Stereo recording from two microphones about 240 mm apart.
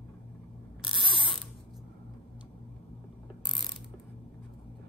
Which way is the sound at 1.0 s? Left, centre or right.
Left.